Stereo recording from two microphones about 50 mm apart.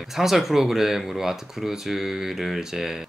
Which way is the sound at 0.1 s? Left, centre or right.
Centre.